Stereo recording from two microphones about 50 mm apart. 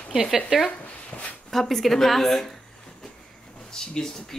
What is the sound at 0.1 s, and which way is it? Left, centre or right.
Speech, centre.